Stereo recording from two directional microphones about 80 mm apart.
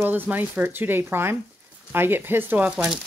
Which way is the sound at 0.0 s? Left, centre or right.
Right.